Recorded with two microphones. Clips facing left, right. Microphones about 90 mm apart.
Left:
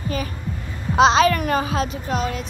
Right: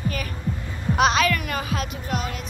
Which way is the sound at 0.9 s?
30° left (ahead or behind).